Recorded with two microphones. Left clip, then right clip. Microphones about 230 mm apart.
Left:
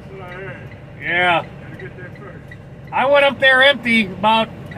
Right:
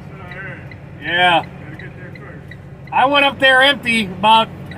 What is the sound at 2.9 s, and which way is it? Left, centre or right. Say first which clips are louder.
Speech: even; right.